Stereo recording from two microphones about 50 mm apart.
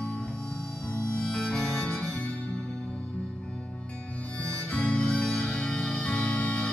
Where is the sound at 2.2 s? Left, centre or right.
Left.